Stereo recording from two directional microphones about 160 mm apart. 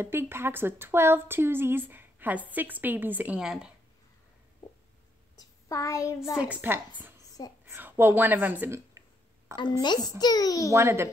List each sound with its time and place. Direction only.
0.0 s a woman's voice: 15° right (ahead or behind)
5.4 s a child's voice: 20° left (ahead or behind)
6.4 s a woman's voice: 10° right (ahead or behind)
7.2 s whispering: 25° left (ahead or behind)
7.6 s speech: 15° right (ahead or behind)
9.6 s a child's voice: 30° left (ahead or behind)
10.7 s a woman's voice: 15° right (ahead or behind)